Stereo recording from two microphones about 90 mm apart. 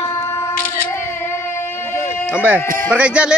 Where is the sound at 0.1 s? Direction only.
30° left (ahead or behind).